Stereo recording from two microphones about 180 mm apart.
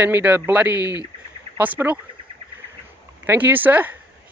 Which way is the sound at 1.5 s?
10° right (ahead or behind).